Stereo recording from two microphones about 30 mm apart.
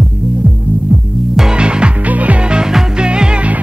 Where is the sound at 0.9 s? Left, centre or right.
Right.